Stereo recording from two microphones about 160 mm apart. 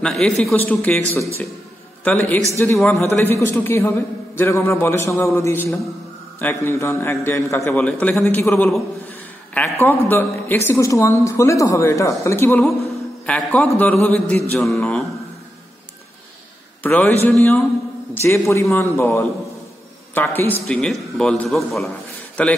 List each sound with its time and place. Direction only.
0.0 s a man's voice: 5° left (ahead or behind)
16.8 s a man's voice: 10° left (ahead or behind)